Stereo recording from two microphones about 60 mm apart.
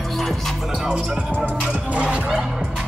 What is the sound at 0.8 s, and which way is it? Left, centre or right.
Music, centre.